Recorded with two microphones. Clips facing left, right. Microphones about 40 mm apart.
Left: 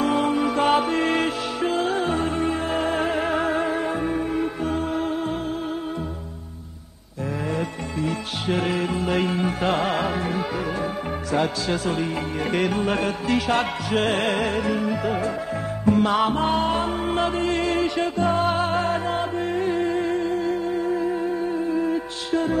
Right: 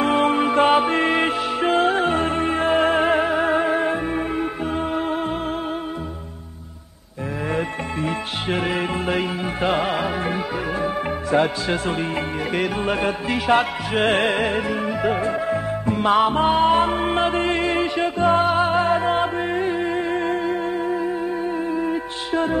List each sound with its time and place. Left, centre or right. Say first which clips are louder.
0.0 s music: right 3 dB; right
3.4 s music: right 4 dB; right
7.5 s music: right 3 dB; right
8.5 s music: right 1 dB; centre
9.1 s music: left 1 dB; centre
10.2 s music: right 1 dB; right
11.3 s a man's voice: right 3 dB; right
12.5 s music: even; centre; by 15.3 s right
15.9 s music: right 1 dB; centre
16.7 s music: right 5 dB; right
17.6 s music: right 1 dB; centre